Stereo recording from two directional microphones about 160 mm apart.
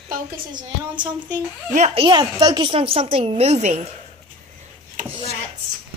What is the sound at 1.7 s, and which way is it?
Speech, 40° right (ahead or behind).